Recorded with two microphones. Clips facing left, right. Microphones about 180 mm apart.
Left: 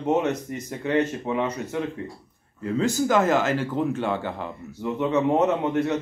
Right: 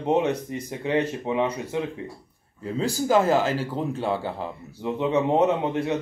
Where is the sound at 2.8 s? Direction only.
30° right (ahead or behind).